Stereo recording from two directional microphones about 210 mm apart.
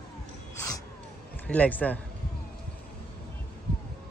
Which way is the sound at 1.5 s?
5° left (ahead or behind).